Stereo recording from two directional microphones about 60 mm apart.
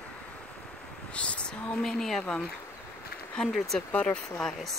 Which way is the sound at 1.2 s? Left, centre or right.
Centre.